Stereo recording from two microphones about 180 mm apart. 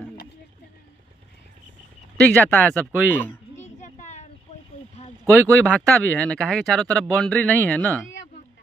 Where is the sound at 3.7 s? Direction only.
40° left (ahead or behind).